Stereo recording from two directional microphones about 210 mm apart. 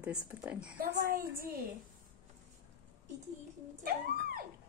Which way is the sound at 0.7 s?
40° right (ahead or behind).